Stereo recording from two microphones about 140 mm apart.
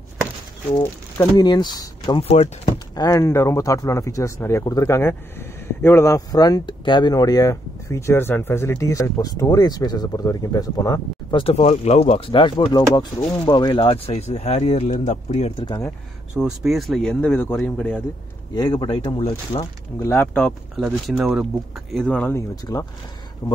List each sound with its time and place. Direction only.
0.7 s speech: 25° left (ahead or behind)
2.2 s speech: 50° left (ahead or behind)
3.0 s speech: 25° left (ahead or behind)
11.4 s speech: 50° left (ahead or behind)
16.3 s speech: centre (ahead or behind)
18.5 s speech: 30° left (ahead or behind)
20.0 s speech: 15° left (ahead or behind)
20.4 s speech: centre (ahead or behind)
22.7 s speech: 25° left (ahead or behind)